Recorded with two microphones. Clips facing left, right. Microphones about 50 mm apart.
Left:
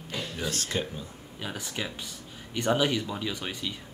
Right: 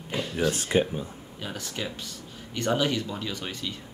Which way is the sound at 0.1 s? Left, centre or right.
Right.